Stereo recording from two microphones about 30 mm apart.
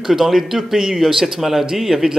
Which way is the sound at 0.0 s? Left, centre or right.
Centre.